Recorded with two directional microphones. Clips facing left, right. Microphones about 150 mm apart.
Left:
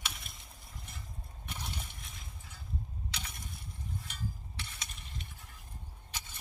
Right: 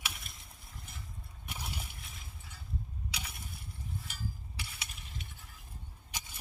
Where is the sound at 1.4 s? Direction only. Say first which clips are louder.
Even; 5° right (ahead or behind).